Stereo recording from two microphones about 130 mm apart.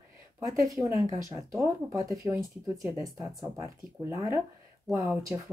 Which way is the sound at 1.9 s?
25° right (ahead or behind).